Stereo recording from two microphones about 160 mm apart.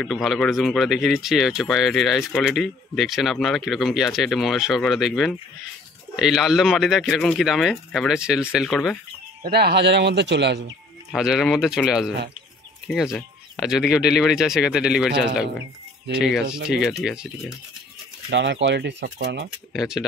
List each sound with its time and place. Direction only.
0.0 s speech: centre (ahead or behind)
9.4 s speech: 80° right
11.1 s speech: 5° right (ahead or behind)
18.3 s speech: 90° right
19.7 s speech: centre (ahead or behind)